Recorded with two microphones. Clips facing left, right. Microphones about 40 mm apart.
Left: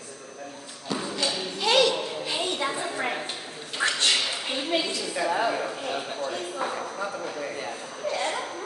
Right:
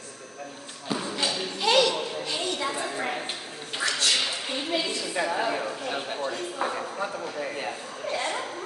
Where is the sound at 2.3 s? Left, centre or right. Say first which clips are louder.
Left 3 dB; centre.